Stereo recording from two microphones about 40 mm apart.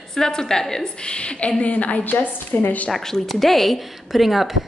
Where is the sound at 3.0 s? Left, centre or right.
Centre.